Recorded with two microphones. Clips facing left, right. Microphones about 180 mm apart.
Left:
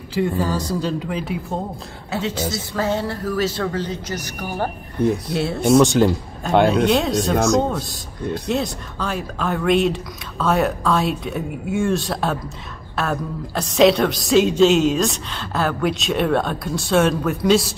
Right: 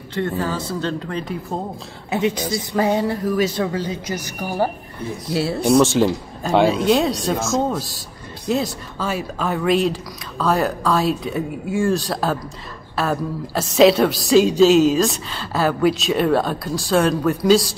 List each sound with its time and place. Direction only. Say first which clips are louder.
0.1 s a man's voice: left 2 dB; 10° left (ahead or behind)
2.0 s a woman's voice: right 3 dB; 15° right (ahead or behind); by 17.7 s centre (ahead or behind)